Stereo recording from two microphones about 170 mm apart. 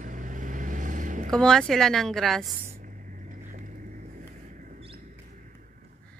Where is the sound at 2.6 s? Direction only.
45° right (ahead or behind).